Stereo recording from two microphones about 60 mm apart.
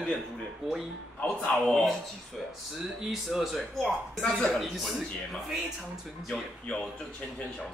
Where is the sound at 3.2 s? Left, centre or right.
Centre.